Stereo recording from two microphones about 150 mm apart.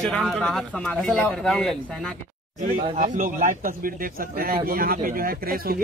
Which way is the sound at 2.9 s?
60° right (ahead or behind).